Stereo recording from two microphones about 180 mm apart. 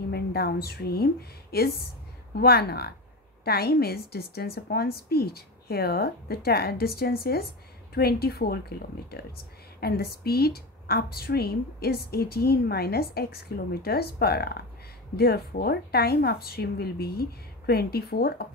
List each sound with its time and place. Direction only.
0.1 s a woman's voice: 60° left (ahead or behind)